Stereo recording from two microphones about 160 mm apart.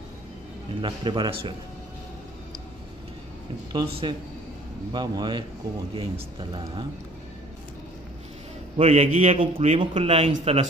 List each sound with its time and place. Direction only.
0.7 s a man's voice: 30° right (ahead or behind)
3.7 s a man's voice: 30° right (ahead or behind)
8.7 s a man's voice: 40° right (ahead or behind)